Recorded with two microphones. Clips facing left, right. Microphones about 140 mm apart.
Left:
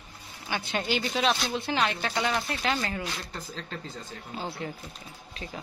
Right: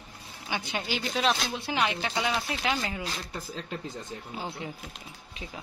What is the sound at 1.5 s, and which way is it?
Speech, 10° right (ahead or behind).